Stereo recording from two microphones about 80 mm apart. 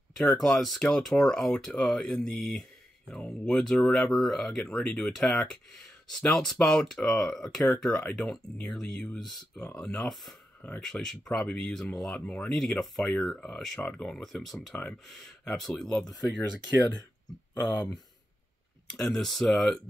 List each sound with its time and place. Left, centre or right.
0.1 s speech: centre
14.7 s speech: centre
18.9 s speech: centre